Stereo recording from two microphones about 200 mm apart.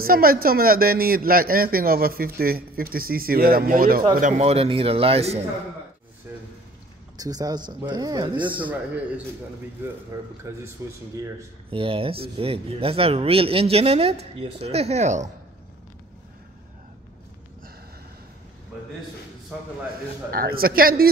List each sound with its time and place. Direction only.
0.0 s speech: 45° right (ahead or behind)
4.2 s speech: 35° right (ahead or behind)
7.2 s speech: 20° right (ahead or behind)
8.6 s a man's voice: 5° right (ahead or behind)
11.7 s speech: 25° right (ahead or behind)
20.2 s speech: 45° right (ahead or behind)